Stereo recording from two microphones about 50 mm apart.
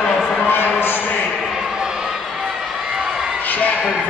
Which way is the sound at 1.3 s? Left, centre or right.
Centre.